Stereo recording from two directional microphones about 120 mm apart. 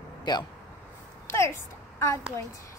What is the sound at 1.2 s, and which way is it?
Speech, 20° left (ahead or behind).